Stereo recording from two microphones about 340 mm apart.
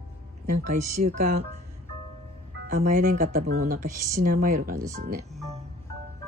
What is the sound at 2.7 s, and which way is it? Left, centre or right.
Speech, right.